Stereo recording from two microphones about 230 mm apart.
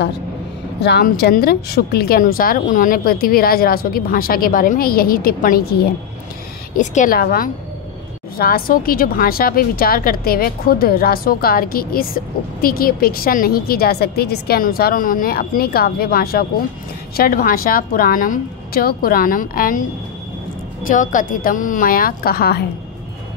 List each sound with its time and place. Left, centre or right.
0.7 s a woman's voice: left
6.8 s a woman's voice: left
20.8 s a woman's voice: left